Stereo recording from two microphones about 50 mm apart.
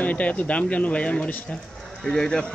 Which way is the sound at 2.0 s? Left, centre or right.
Centre.